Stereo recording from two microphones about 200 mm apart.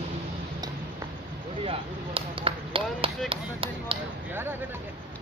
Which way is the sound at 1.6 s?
30° right (ahead or behind).